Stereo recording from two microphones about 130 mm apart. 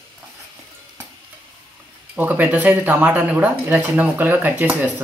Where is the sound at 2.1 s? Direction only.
15° right (ahead or behind).